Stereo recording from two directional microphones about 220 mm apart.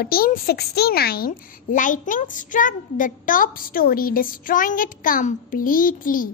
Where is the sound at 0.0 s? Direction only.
40° left (ahead or behind).